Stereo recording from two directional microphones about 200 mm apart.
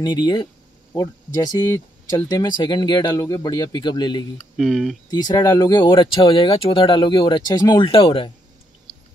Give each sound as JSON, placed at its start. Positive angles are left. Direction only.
{"t": 0.0, "sound": "speech", "side_deg": 20}
{"t": 4.6, "sound": "speech", "side_deg": 0}
{"t": 5.1, "sound": "speech", "side_deg": 20}